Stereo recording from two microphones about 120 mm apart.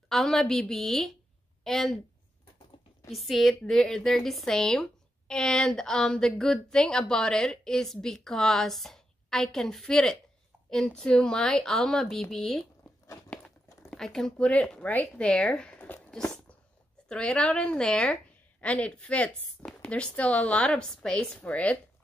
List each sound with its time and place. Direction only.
0.1 s a woman's voice: centre (ahead or behind)
3.1 s speech: centre (ahead or behind)
12.8 s a sound: 25° left (ahead or behind)
13.8 s a woman's voice: 5° left (ahead or behind)